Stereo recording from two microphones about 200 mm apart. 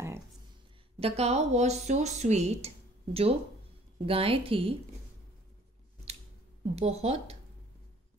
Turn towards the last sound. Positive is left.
turn(degrees=-30)  # may be behind; listen again after turning